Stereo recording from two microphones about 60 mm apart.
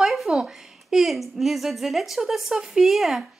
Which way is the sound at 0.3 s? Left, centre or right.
Centre.